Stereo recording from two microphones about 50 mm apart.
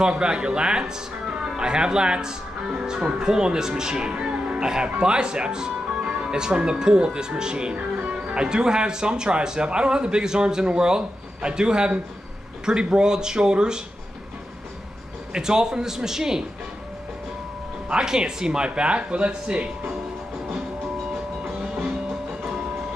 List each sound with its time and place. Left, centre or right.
0.0 s speech: centre
15.3 s speech: centre
17.8 s speech: centre